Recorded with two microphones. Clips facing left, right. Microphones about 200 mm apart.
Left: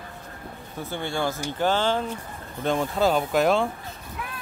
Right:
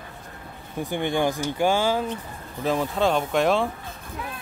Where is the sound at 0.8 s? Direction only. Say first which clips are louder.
Right 4 dB; 15° right (ahead or behind); by 3.7 s centre (ahead or behind).